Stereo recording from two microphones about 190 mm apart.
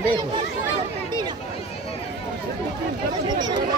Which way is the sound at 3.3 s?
20° right (ahead or behind).